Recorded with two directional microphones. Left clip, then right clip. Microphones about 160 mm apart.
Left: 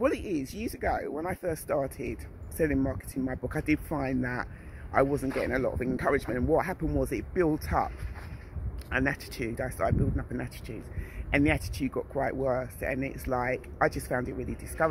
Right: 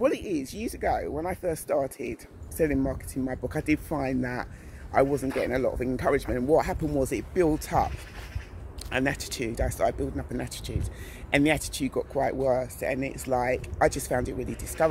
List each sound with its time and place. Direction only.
0.0 s speech: 10° right (ahead or behind)
8.9 s speech: 15° right (ahead or behind)